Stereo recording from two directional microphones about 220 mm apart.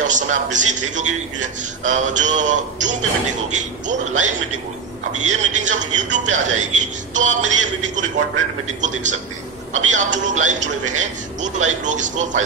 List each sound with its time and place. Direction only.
0.1 s a man's voice: 35° right (ahead or behind)